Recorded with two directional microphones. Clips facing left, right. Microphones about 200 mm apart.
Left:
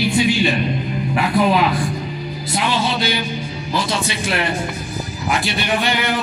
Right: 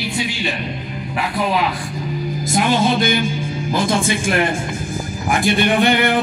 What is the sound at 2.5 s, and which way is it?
Speech, 50° right (ahead or behind).